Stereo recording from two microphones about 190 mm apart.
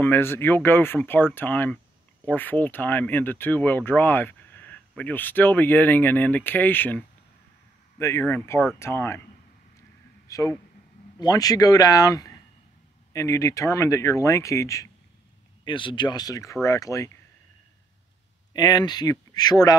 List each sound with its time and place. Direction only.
0.0 s speech: 10° left (ahead or behind)
10.2 s speech: 15° left (ahead or behind)
18.5 s speech: 20° left (ahead or behind)